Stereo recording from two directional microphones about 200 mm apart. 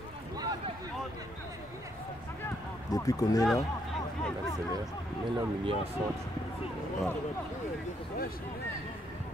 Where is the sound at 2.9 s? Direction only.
20° left (ahead or behind).